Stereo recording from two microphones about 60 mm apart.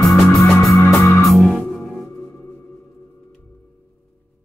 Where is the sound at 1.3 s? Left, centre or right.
Centre.